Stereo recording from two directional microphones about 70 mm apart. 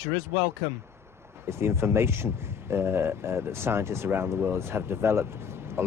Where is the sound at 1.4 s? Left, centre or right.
Right.